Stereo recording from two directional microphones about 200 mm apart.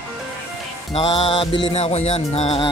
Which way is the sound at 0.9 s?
25° left (ahead or behind).